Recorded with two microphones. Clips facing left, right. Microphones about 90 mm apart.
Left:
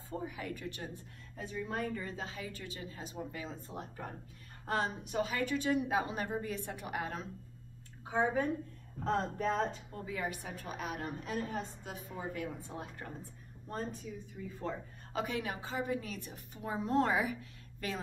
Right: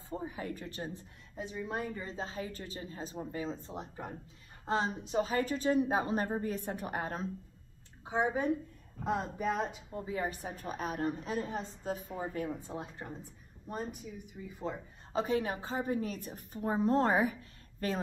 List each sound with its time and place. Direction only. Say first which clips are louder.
0.1 s a woman's voice: right 1 dB; 30° right (ahead or behind)
1.3 s a woman's voice: right 1 dB; 20° right (ahead or behind); by 7.2 s 40° right (ahead or behind)
8.0 s a woman's voice: even; 20° right (ahead or behind)
10.0 s a woman's voice: right 2 dB; 30° right (ahead or behind)
11.9 s a woman's voice: right 6 dB; 40° right (ahead or behind)
12.4 s a woman's voice: right 3 dB; 25° right (ahead or behind)
15.1 s a woman's voice: right 5 dB; 35° right (ahead or behind)